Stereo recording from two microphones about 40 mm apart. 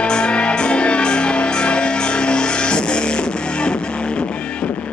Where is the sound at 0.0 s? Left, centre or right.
Left.